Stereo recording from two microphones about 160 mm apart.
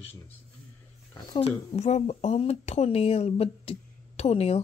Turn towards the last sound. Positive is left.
turn(degrees=40)  # may be behind; listen again after turning